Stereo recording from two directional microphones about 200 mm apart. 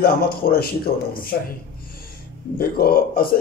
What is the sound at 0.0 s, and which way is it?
Speech, 50° left (ahead or behind).